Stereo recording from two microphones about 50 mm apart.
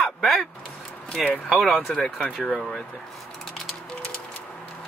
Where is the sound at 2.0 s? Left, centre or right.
Centre.